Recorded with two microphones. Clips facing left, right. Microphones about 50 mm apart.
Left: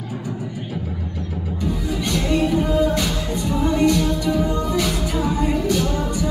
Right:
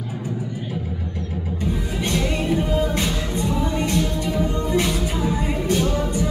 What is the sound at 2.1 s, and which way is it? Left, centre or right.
Music, right.